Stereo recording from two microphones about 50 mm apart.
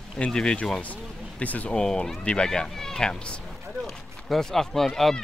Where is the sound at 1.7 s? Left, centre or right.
Centre.